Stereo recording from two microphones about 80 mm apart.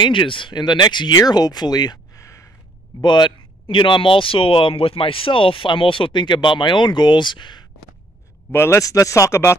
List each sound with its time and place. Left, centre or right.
0.0 s speech: left
3.0 s speech: left
8.5 s speech: left